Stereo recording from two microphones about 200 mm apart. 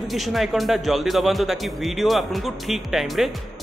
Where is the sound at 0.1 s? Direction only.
Centre (ahead or behind).